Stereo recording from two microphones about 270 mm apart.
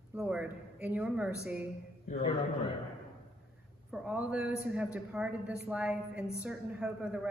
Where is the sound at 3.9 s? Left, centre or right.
Centre.